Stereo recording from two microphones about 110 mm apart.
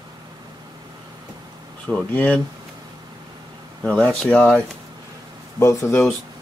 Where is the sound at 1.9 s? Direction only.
10° left (ahead or behind).